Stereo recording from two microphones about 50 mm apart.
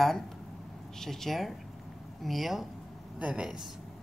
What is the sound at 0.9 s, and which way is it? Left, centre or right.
Speech, centre.